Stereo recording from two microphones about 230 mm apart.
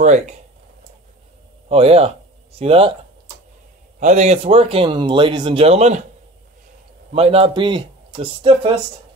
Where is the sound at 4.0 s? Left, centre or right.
Right.